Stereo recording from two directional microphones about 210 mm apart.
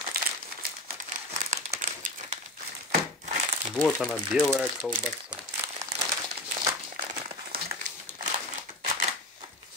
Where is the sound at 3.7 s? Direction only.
Centre (ahead or behind).